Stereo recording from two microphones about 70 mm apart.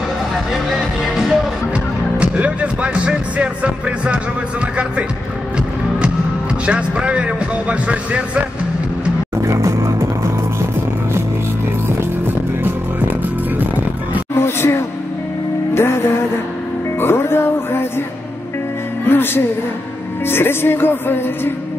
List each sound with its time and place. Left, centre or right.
0.7 s music: centre
2.1 s speech: centre
6.6 s speech: centre
9.4 s music: right
14.3 s music: left
19.0 s music: left
20.2 s speech: left